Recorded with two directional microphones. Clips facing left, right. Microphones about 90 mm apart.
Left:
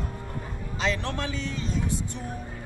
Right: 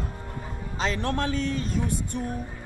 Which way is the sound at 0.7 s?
40° right (ahead or behind).